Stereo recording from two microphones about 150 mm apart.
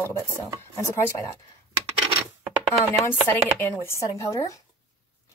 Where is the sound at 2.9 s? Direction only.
15° left (ahead or behind).